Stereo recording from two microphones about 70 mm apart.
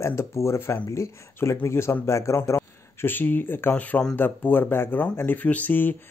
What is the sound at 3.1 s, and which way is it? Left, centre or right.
Speech, left.